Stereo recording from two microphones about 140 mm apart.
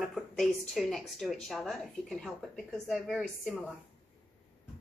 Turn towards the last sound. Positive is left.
turn(degrees=5)  # may be behind; listen again after turning